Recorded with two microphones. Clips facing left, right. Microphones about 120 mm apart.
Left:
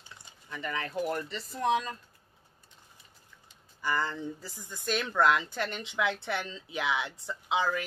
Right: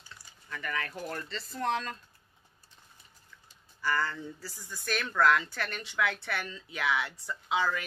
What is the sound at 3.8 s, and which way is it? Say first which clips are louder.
Speech: even; 20° left (ahead or behind).